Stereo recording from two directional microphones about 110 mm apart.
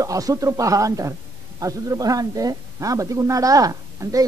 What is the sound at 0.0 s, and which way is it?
A man's voice, 30° right (ahead or behind).